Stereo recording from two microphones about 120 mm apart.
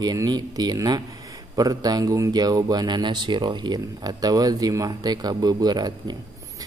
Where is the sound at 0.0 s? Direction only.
35° right (ahead or behind).